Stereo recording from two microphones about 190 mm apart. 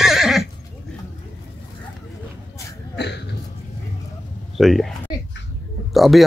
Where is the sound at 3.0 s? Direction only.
65° left (ahead or behind).